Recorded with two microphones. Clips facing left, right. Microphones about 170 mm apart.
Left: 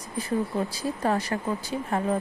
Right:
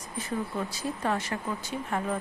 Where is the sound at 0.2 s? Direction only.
35° left (ahead or behind).